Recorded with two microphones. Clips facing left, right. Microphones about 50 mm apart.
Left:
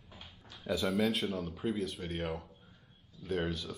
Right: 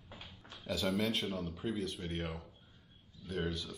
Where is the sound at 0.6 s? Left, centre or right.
Centre.